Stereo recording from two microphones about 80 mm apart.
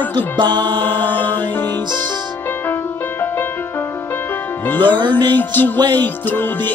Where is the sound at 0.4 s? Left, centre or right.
Right.